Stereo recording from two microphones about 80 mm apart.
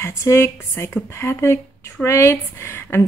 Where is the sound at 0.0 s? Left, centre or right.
Left.